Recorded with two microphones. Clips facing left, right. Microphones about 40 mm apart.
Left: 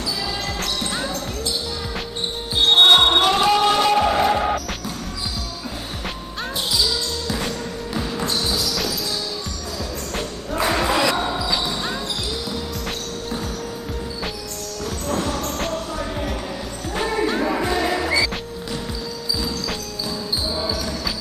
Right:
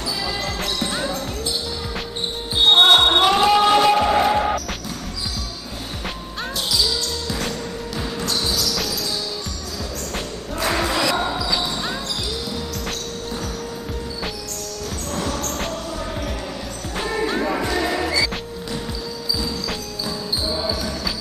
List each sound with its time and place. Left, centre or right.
0.6 s music: centre
2.6 s basketball bounce: centre
6.7 s music: centre
8.2 s basketball bounce: centre
8.6 s music: centre
10.7 s a sound: centre
11.4 s basketball bounce: centre
15.1 s a sound: centre
15.5 s music: centre
16.9 s music: centre
20.4 s basketball bounce: centre